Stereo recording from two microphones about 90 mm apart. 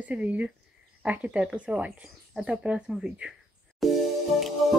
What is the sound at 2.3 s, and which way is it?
Speech, 5° right (ahead or behind).